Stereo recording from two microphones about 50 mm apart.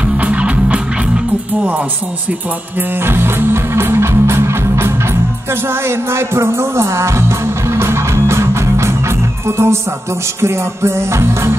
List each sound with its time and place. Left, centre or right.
0.0 s music: right
3.0 s music: right